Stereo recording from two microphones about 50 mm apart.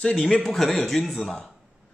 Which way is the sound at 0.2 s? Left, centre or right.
Centre.